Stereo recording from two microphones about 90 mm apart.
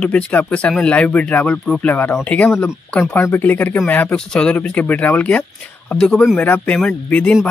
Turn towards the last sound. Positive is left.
turn(degrees=15)  # may be behind; listen again after turning